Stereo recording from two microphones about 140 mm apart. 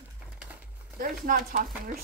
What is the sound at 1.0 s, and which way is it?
Speech, 85° right.